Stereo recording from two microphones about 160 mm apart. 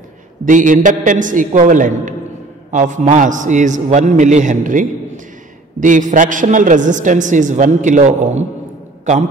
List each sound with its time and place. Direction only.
0.5 s a man's voice: 55° right (ahead or behind)